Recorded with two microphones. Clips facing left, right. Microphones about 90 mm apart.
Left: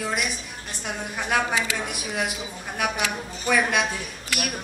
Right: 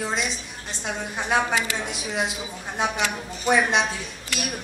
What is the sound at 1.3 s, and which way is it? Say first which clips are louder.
A man's voice: right 1 dB; 25° right (ahead or behind).